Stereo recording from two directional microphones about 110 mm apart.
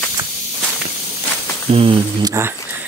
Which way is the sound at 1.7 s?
60° right (ahead or behind).